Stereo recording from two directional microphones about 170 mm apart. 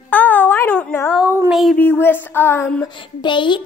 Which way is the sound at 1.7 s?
10° left (ahead or behind).